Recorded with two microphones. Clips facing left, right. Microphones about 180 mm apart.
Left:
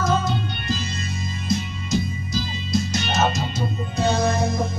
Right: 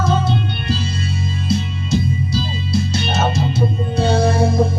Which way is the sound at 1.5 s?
30° right (ahead or behind).